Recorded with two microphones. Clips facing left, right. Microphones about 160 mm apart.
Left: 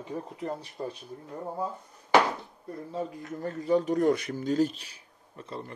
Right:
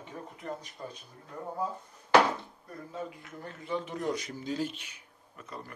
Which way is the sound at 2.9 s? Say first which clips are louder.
Left 6 dB; 35° left (ahead or behind).